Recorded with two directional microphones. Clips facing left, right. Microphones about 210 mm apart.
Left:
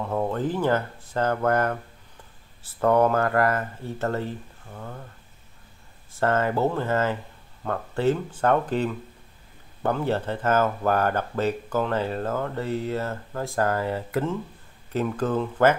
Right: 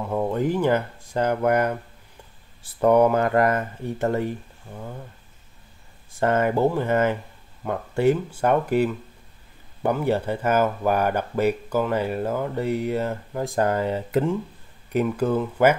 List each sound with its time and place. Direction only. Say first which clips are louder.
0.1 s speech: right 3 dB; 15° right (ahead or behind)
6.1 s speech: right 2 dB; 15° right (ahead or behind)